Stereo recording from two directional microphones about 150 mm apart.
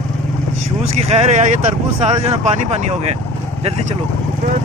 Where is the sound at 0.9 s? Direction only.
45° right (ahead or behind).